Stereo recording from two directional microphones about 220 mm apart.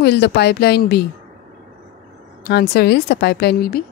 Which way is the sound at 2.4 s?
45° left (ahead or behind).